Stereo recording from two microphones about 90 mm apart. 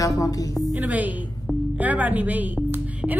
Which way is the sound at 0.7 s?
15° right (ahead or behind).